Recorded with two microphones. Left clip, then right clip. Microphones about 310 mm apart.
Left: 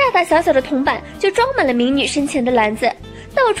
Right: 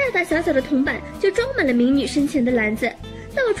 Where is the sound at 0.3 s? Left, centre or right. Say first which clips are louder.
Left 6 dB; left.